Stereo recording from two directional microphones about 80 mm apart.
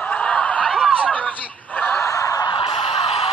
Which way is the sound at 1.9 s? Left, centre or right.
Left.